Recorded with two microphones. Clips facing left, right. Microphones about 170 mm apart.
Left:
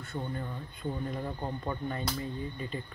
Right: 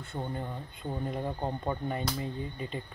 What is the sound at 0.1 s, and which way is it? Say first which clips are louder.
Speech: right 1 dB; 25° right (ahead or behind).